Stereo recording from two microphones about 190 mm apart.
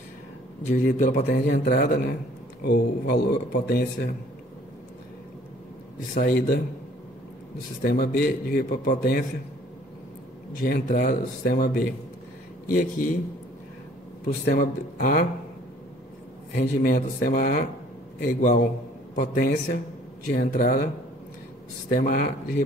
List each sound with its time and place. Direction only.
0.7 s a man's voice: 35° left (ahead or behind)
1.6 s speech: 50° left (ahead or behind)
6.1 s speech: 50° left (ahead or behind)
7.8 s speech: 55° left (ahead or behind)
10.6 s speech: 45° left (ahead or behind)
14.2 s speech: 45° left (ahead or behind)
16.8 s speech: 45° left (ahead or behind)